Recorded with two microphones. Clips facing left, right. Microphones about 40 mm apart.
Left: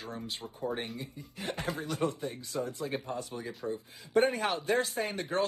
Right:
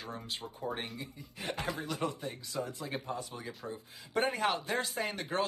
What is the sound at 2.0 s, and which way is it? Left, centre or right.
Speech, centre.